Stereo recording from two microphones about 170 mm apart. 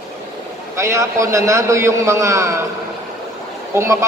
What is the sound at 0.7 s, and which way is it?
A woman's voice, 15° right (ahead or behind).